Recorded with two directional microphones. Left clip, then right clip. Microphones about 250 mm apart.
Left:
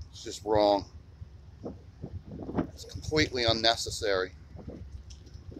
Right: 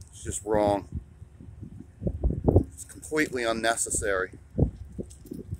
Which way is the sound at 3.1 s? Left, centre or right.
Centre.